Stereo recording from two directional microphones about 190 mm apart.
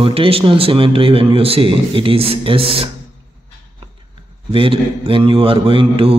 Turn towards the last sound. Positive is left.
turn(degrees=-30)  # may be behind; listen again after turning